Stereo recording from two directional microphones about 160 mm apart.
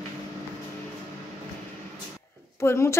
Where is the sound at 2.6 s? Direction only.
15° left (ahead or behind).